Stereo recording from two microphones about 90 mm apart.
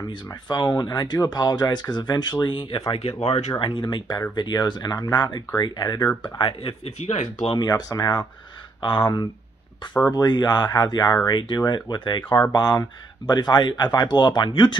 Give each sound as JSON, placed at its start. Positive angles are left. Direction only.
{"t": 0.3, "sound": "speech", "side_deg": 55}
{"t": 2.4, "sound": "speech", "side_deg": 70}
{"t": 2.9, "sound": "speech", "side_deg": 90}
{"t": 6.3, "sound": "speech", "side_deg": 75}
{"t": 7.5, "sound": "speech", "side_deg": 50}
{"t": 8.8, "sound": "speech", "side_deg": 65}